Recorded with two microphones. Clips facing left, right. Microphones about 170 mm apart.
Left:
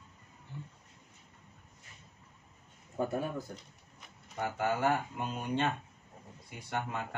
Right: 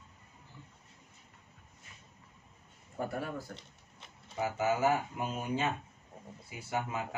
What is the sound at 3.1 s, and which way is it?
Speech, 20° left (ahead or behind).